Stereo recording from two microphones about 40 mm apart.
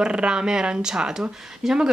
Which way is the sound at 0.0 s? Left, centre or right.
Right.